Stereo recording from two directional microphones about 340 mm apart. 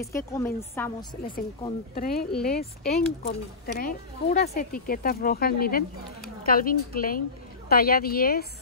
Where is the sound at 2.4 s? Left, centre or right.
Left.